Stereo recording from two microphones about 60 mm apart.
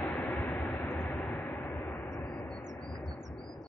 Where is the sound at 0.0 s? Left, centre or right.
Left.